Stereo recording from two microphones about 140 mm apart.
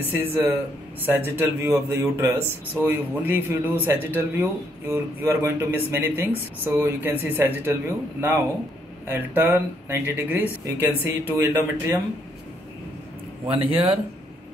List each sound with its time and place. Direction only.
0.0 s speech: 15° right (ahead or behind)
13.7 s speech: 40° right (ahead or behind)